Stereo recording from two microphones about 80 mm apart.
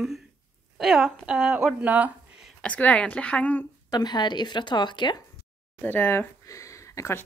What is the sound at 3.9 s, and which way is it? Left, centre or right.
A woman's voice, left.